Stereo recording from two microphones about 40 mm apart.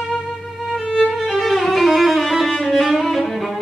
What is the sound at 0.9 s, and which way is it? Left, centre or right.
Violin, centre.